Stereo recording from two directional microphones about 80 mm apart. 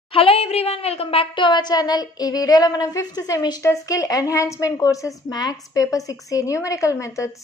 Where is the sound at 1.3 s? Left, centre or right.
Left.